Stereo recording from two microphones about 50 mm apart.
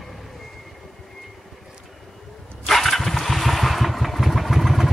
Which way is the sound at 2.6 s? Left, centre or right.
Centre.